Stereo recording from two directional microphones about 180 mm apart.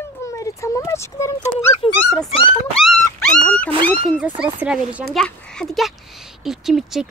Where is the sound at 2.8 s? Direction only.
5° left (ahead or behind).